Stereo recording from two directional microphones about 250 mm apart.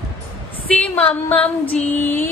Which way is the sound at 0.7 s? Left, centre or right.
Centre.